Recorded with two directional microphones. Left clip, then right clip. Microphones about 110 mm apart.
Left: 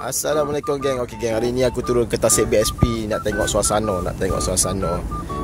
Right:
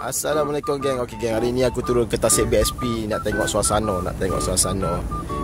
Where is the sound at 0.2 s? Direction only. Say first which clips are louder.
Left 1 dB; 5° left (ahead or behind).